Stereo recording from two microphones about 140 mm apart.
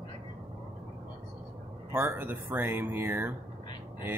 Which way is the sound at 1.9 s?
20° right (ahead or behind).